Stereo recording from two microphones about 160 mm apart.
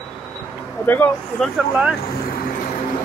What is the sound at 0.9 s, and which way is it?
Speech, 10° left (ahead or behind).